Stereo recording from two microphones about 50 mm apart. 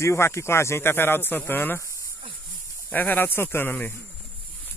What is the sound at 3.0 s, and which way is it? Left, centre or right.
Speech, left.